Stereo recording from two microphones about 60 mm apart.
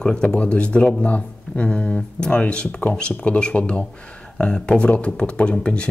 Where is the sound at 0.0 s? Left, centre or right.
Centre.